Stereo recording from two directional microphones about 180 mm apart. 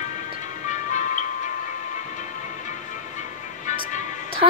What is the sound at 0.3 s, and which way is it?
Music, 45° left (ahead or behind).